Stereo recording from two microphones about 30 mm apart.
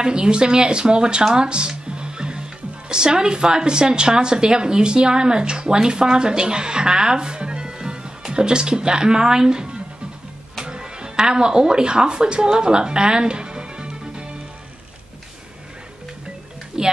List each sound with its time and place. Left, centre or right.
0.0 s speech: right
1.9 s music: right
2.9 s speech: right
16.8 s speech: right